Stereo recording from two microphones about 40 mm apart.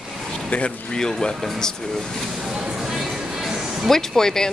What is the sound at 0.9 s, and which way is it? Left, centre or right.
Speech, centre.